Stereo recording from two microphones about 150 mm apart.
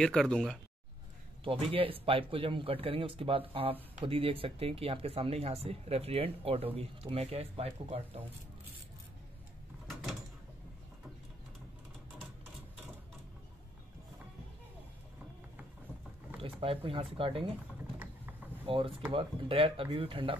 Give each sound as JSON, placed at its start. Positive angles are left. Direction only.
{"t": 0.0, "sound": "speech", "side_deg": 5}
{"t": 1.4, "sound": "speech", "side_deg": -40}
{"t": 16.3, "sound": "speech", "side_deg": -40}
{"t": 18.7, "sound": "speech", "side_deg": -40}